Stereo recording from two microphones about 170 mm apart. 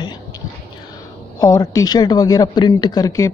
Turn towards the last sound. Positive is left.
turn(degrees=20)  # may be behind; listen again after turning